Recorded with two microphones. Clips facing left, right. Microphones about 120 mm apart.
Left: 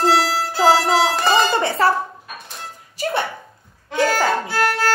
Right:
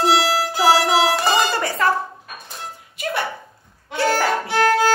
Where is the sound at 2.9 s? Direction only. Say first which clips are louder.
Left 3 dB; 35° left (ahead or behind).